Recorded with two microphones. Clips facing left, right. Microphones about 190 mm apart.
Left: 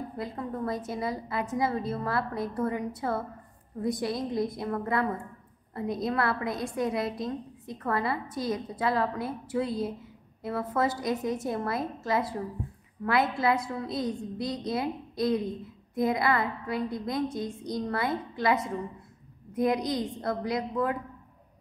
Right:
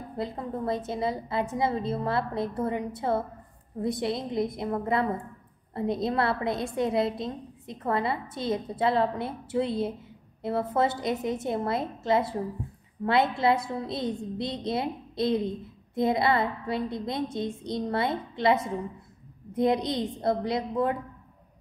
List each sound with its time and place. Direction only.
0.2 s a woman's voice: 25° right (ahead or behind)